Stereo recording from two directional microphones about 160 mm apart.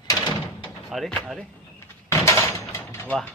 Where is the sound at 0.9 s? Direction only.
5° left (ahead or behind).